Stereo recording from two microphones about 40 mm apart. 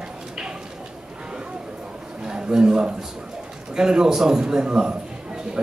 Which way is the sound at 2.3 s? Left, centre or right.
Centre.